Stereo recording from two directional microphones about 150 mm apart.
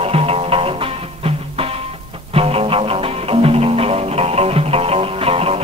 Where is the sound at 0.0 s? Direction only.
40° right (ahead or behind).